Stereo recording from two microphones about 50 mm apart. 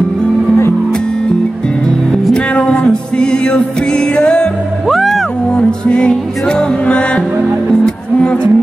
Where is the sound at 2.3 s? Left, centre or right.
Left.